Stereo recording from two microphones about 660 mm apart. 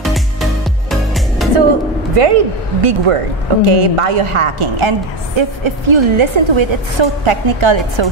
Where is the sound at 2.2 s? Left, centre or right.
Right.